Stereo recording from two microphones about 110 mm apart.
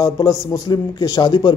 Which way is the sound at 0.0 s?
30° left (ahead or behind).